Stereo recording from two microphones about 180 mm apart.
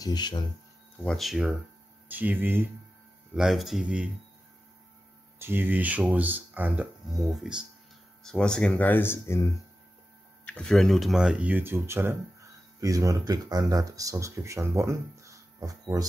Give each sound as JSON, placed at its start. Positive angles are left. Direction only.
{"t": 0.0, "sound": "speech", "side_deg": 25}
{"t": 1.0, "sound": "speech", "side_deg": 0}
{"t": 3.3, "sound": "speech", "side_deg": 0}
{"t": 5.4, "sound": "speech", "side_deg": -10}